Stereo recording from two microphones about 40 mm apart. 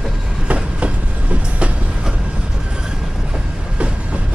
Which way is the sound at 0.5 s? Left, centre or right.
Right.